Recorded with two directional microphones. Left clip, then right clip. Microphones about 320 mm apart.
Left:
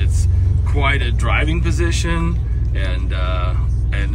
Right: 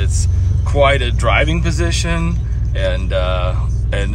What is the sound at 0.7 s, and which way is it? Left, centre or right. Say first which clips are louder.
Speech: right 7 dB; centre.